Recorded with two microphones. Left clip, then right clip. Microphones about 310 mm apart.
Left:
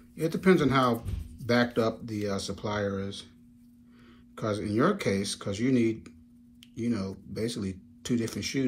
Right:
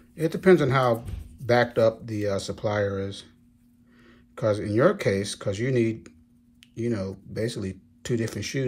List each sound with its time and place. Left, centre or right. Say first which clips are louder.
0.2 s speech: right 5 dB; right
4.4 s speech: right 6 dB; right